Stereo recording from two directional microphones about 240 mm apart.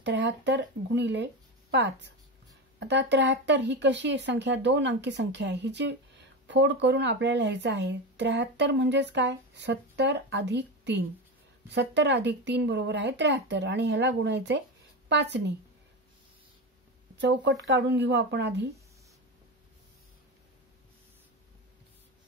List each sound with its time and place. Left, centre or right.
0.0 s speech: right
17.2 s speech: right